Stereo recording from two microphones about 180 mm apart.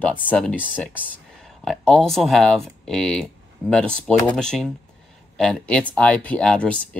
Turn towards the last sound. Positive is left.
turn(degrees=5)  # may be behind; listen again after turning